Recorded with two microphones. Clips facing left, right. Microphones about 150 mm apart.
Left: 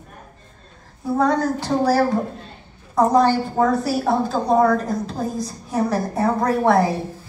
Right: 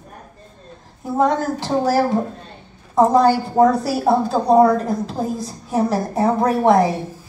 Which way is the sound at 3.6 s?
35° right (ahead or behind).